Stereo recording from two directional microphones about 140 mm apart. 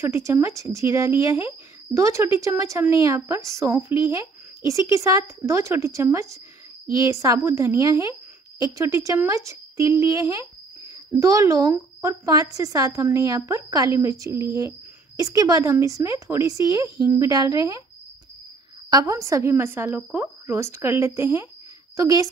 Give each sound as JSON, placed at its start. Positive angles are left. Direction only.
{"t": 0.0, "sound": "a woman's voice", "side_deg": -20}
{"t": 18.9, "sound": "a woman's voice", "side_deg": -25}